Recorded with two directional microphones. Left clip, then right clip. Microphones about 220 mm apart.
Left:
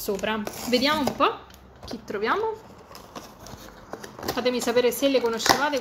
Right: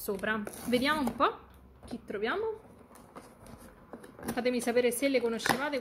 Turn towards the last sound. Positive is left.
turn(degrees=-15)  # may be behind; listen again after turning